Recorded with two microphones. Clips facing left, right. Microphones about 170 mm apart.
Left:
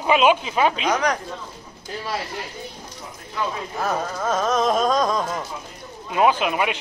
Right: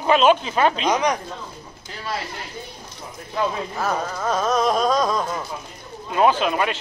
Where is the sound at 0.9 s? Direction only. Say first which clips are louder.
Right 1 dB; 10° right (ahead or behind).